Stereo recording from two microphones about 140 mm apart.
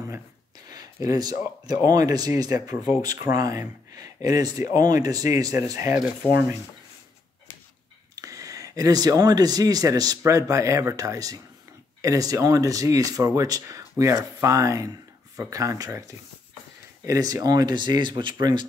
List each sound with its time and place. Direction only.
0.7 s speech: 25° right (ahead or behind)
8.2 s speech: 25° right (ahead or behind)